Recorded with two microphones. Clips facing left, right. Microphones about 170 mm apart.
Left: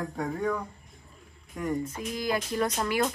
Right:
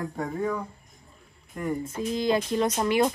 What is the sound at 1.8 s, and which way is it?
Speech, 30° right (ahead or behind).